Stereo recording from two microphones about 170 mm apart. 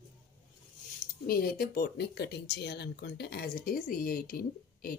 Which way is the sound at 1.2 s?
60° left (ahead or behind).